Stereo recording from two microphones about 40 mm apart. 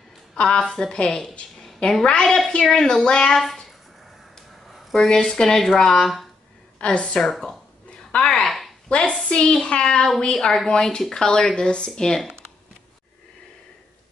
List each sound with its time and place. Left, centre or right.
0.4 s a woman's voice: left
0.7 s speech: centre
0.9 s a woman's voice: left
1.6 s a sound: centre
2.2 s a woman's voice: centre
4.9 s speech: centre
6.8 s a woman's voice: left
7.2 s speech: centre
8.3 s a sound: centre
8.8 s a woman's voice: left
10.7 s a woman's voice: left